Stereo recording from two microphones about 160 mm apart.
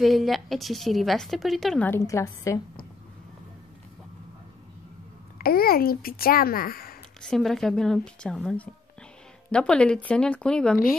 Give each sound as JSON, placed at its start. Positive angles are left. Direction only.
{"t": 0.0, "sound": "a woman's voice", "side_deg": 0}
{"t": 1.9, "sound": "a woman's voice", "side_deg": 15}
{"t": 5.4, "sound": "speech", "side_deg": 70}
{"t": 7.2, "sound": "a woman's voice", "side_deg": 5}